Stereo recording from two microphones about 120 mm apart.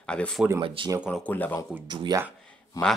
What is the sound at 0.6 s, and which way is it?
Speech, 45° right (ahead or behind).